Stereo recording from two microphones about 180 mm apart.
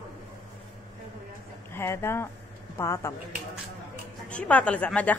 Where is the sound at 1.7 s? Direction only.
15° left (ahead or behind).